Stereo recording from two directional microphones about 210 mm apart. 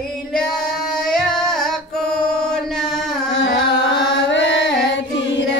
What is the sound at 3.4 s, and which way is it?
Carnatic music, 60° left (ahead or behind).